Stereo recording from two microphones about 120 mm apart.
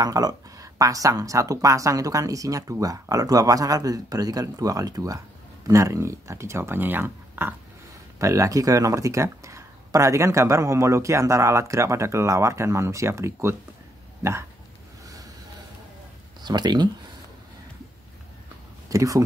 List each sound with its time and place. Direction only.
0.0 s speech: 30° right (ahead or behind)
16.4 s speech: 35° right (ahead or behind)
18.9 s speech: 30° right (ahead or behind)